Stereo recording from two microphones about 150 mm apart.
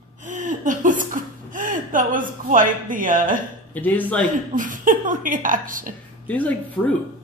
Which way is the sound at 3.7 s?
10° left (ahead or behind).